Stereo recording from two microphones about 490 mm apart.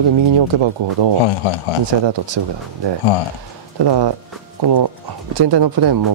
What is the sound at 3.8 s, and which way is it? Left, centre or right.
Speech, right.